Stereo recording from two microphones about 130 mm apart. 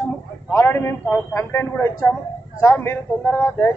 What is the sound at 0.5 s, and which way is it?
A man's voice, 20° left (ahead or behind).